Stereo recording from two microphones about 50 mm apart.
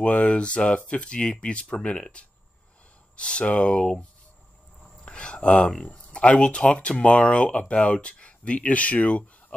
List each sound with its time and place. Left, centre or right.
0.0 s speech: left
5.0 s a sound: centre
5.9 s speech: left